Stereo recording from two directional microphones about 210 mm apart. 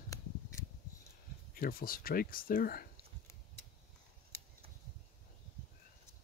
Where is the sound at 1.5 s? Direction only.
45° left (ahead or behind).